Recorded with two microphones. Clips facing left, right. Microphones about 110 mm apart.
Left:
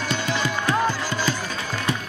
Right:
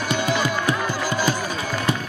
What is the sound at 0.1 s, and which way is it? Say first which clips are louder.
Music: right 4 dB; 10° right (ahead or behind).